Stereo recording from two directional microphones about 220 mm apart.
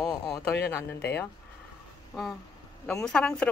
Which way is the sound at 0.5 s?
50° left (ahead or behind).